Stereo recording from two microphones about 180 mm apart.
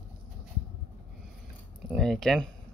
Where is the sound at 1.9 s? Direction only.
Centre (ahead or behind).